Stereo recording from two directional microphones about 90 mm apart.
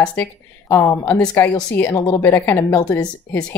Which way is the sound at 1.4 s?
20° left (ahead or behind).